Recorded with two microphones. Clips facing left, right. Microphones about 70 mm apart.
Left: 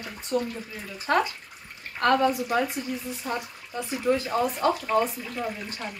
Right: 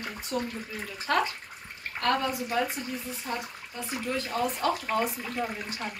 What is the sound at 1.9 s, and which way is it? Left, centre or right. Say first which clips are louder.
Speech: left 6 dB; left.